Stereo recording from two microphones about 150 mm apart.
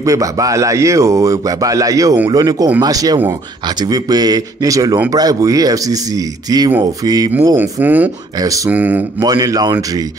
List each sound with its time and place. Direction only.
0.0 s speech: 20° right (ahead or behind)
7.5 s speech: 10° right (ahead or behind)
8.4 s speech: 20° right (ahead or behind)
8.6 s speech: 10° right (ahead or behind)
9.2 s speech: 25° right (ahead or behind)